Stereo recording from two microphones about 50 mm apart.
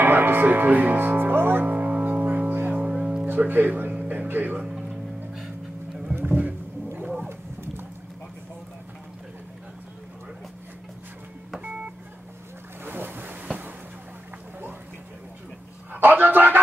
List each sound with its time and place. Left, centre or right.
0.0 s music: right
2.7 s music: right
3.3 s speech: right
4.3 s music: right
4.6 s music: centre
4.8 s music: centre
6.1 s rowboat: right
12.8 s boat: right
15.9 s a sound: right